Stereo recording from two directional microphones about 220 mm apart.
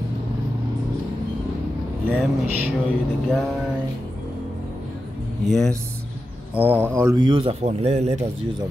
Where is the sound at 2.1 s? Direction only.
10° right (ahead or behind).